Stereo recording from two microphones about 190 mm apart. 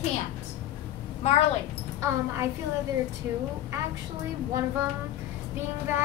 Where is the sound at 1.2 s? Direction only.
35° left (ahead or behind).